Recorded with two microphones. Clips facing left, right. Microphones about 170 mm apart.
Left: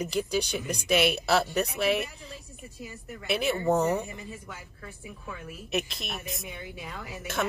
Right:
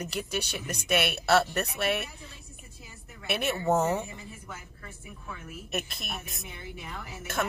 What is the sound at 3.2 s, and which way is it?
Speech, 5° right (ahead or behind).